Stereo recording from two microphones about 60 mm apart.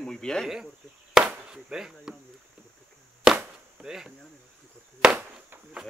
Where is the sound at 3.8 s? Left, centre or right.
Centre.